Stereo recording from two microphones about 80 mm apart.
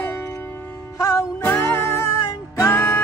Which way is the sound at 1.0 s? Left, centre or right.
Left.